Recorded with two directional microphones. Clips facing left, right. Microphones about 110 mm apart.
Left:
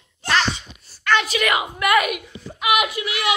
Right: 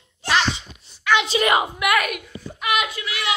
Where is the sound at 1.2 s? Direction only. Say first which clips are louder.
Right 3 dB; 30° right (ahead or behind).